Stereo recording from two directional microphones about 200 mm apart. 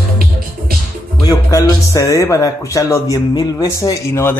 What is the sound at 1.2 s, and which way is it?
Speech, 20° left (ahead or behind).